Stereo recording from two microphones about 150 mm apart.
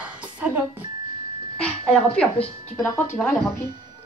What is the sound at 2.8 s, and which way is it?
Speech, 15° left (ahead or behind).